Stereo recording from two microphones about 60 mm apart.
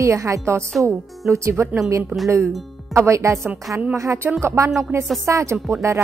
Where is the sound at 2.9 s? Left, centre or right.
Right.